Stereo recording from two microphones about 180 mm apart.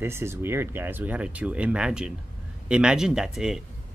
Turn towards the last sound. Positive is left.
turn(degrees=-5)  # may be behind; listen again after turning